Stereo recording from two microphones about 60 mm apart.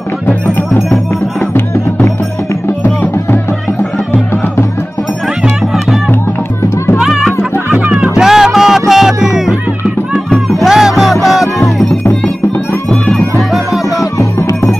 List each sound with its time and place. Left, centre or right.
7.0 s music: centre
7.7 s music: right
8.2 s music: centre